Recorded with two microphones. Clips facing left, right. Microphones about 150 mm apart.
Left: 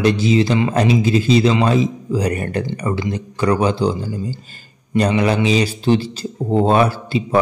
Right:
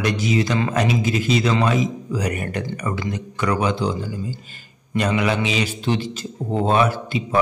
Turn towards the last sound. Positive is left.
turn(degrees=30)  # may be behind; listen again after turning